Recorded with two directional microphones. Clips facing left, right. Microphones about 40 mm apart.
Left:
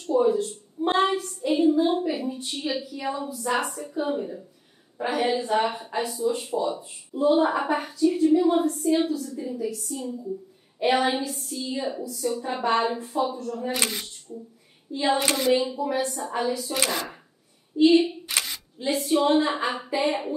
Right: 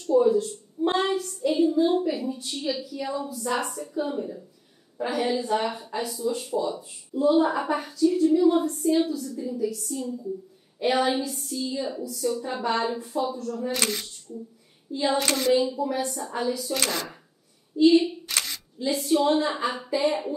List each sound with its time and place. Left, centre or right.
0.0 s a woman's voice: left
10.8 s a woman's voice: left
13.7 s a sound: centre
14.9 s a sound: left
15.6 s a woman's voice: left
17.7 s speech: left
18.2 s single-lens reflex camera: centre
18.9 s a woman's voice: left